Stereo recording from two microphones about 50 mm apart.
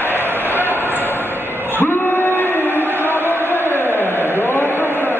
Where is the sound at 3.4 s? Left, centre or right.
Left.